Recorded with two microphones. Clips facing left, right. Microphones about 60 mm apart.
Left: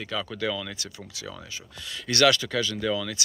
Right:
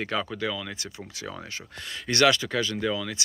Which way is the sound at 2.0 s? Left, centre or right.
Right.